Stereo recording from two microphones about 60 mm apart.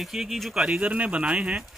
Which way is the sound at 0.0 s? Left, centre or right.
Centre.